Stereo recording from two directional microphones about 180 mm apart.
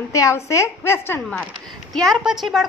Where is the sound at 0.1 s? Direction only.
15° left (ahead or behind).